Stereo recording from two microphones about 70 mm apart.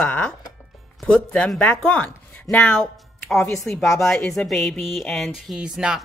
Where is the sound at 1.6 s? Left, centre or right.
Left.